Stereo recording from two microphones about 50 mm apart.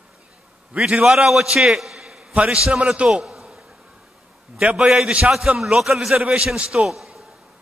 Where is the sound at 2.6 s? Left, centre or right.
Centre.